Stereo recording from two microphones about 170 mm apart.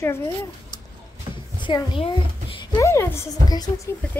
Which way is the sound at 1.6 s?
25° left (ahead or behind).